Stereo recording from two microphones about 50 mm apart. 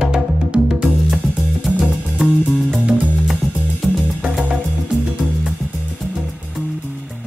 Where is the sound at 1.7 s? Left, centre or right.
Centre.